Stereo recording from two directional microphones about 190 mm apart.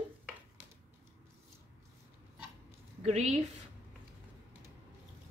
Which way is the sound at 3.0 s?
35° right (ahead or behind).